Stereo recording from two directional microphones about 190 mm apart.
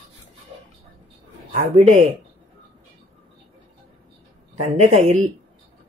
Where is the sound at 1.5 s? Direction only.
40° right (ahead or behind).